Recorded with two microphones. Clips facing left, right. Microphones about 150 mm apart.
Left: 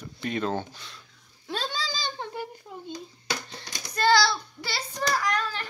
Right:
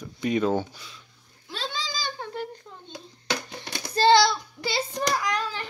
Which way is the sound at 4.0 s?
25° right (ahead or behind).